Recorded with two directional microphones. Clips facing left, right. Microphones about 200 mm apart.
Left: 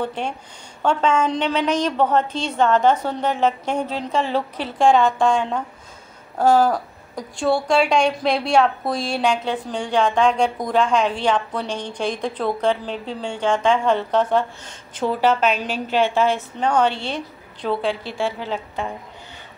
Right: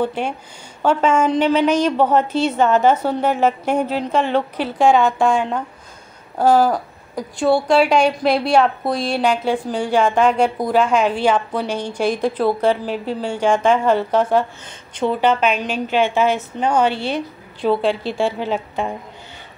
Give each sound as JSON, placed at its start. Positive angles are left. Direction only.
{"t": 0.0, "sound": "a woman's voice", "side_deg": -5}